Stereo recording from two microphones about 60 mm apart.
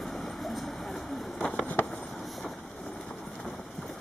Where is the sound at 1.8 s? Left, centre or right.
Left.